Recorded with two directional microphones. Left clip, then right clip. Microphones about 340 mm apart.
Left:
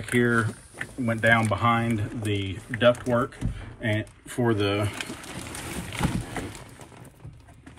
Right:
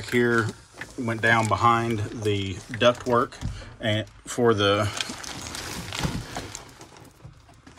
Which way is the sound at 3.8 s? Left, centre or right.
Right.